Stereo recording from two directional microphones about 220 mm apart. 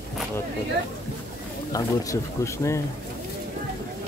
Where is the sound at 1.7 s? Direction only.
15° left (ahead or behind).